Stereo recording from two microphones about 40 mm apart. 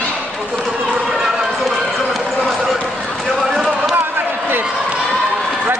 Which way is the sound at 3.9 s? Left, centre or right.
Right.